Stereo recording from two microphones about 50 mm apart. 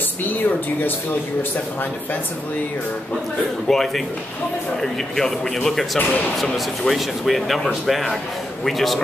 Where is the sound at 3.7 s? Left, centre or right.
Centre.